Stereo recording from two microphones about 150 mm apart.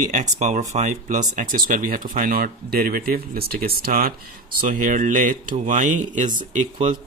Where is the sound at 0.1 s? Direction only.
50° right (ahead or behind); by 3.0 s 75° right (ahead or behind).